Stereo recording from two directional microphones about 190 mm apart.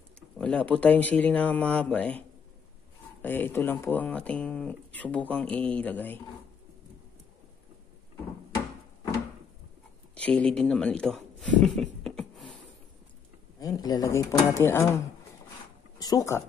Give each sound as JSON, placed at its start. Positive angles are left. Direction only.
{"t": 0.4, "sound": "speech", "side_deg": 5}
{"t": 10.1, "sound": "speech", "side_deg": 5}
{"t": 13.6, "sound": "speech", "side_deg": 20}
{"t": 16.0, "sound": "speech", "side_deg": 20}